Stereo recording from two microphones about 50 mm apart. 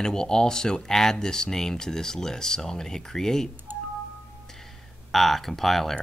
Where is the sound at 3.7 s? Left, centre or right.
Right.